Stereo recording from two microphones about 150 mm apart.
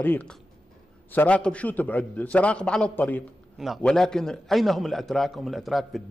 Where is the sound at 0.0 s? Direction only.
10° left (ahead or behind).